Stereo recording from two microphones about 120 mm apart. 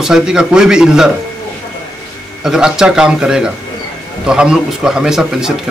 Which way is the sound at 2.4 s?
5° right (ahead or behind).